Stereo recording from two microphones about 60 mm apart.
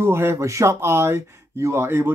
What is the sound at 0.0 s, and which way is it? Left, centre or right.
Speech, right.